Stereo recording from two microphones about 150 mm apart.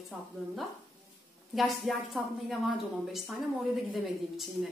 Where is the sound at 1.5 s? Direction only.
Centre (ahead or behind).